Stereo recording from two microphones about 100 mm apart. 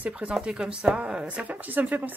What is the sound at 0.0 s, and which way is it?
Speech, 10° right (ahead or behind).